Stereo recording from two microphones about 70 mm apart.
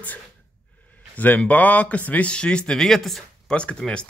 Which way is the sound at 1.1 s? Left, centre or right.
Left.